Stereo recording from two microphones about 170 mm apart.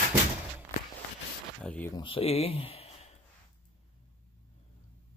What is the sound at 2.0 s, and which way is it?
Speech, 30° left (ahead or behind).